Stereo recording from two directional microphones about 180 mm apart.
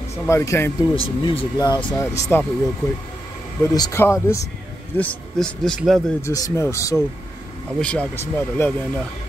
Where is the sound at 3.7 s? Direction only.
15° left (ahead or behind).